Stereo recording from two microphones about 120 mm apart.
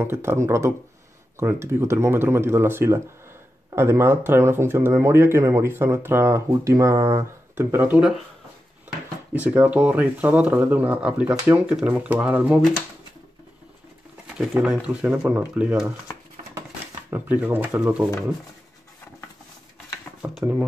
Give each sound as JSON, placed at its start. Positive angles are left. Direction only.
{"t": 0.0, "sound": "speech", "side_deg": -20}
{"t": 9.3, "sound": "speech", "side_deg": -10}
{"t": 14.2, "sound": "speech", "side_deg": -5}
{"t": 17.1, "sound": "speech", "side_deg": -15}